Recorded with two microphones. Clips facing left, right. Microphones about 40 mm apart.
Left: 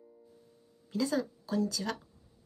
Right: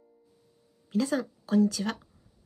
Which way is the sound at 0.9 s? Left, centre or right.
Right.